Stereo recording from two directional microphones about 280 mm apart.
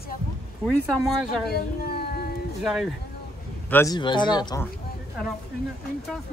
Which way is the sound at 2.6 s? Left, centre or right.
Centre.